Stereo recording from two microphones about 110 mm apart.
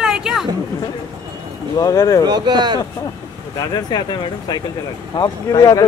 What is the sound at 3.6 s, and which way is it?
Speech, 40° left (ahead or behind).